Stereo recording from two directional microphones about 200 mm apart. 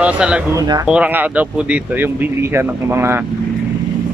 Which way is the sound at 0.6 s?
15° right (ahead or behind).